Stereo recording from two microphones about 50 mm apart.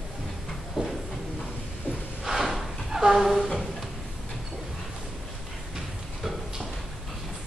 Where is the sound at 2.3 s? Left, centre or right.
Centre.